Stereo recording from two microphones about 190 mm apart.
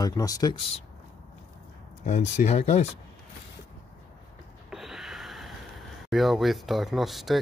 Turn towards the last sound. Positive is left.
turn(degrees=0)  # may be behind; listen again after turning